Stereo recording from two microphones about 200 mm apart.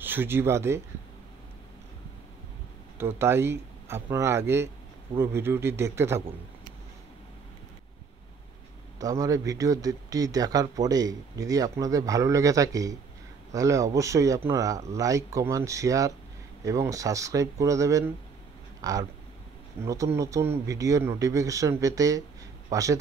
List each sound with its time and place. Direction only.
0.0 s speech: 10° right (ahead or behind)
3.0 s speech: 10° right (ahead or behind)
9.0 s speech: 15° right (ahead or behind)